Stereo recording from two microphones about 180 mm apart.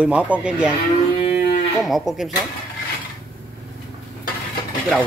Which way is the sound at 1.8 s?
Centre (ahead or behind).